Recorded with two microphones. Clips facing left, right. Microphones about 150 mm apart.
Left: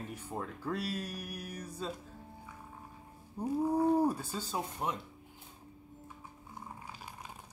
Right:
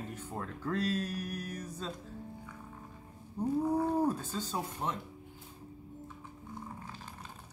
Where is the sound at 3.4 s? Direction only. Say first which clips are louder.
Even; 10° left (ahead or behind).